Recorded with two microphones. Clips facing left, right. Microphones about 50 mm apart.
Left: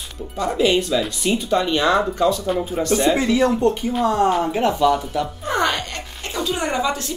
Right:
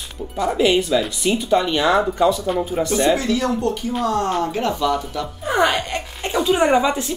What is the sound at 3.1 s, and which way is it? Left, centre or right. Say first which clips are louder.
Speech: left 2 dB; left.